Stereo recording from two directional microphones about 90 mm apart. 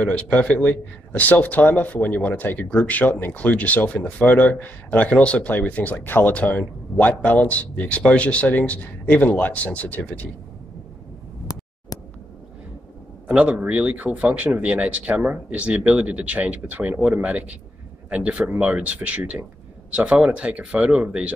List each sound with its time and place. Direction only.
0.0 s a man's voice: 15° left (ahead or behind)
11.9 s a sound: 45° left (ahead or behind)
13.3 s speech: 15° right (ahead or behind)